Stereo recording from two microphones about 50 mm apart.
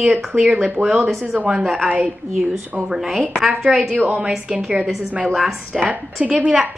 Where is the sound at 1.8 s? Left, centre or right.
Right.